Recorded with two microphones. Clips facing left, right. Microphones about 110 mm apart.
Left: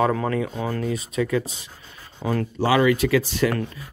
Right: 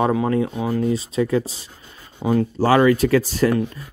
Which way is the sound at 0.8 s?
30° right (ahead or behind).